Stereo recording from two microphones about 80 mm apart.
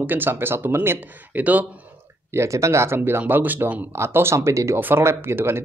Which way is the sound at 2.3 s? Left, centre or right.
Right.